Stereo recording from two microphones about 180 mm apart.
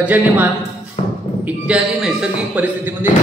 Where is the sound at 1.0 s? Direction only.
35° left (ahead or behind).